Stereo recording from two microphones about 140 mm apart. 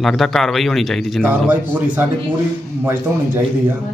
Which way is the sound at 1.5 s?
10° right (ahead or behind).